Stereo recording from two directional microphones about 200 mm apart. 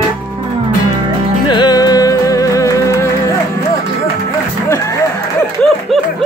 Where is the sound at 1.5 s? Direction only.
20° left (ahead or behind).